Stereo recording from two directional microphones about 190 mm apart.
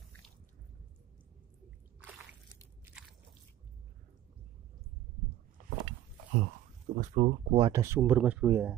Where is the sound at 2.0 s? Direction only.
10° right (ahead or behind).